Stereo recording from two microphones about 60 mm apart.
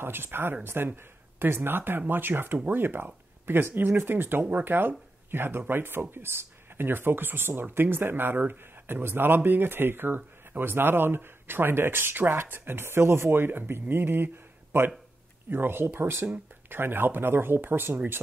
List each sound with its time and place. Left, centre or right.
0.0 s speech: right